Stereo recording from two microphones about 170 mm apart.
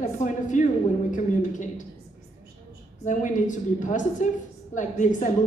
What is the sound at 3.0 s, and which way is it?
A woman's voice, 45° left (ahead or behind).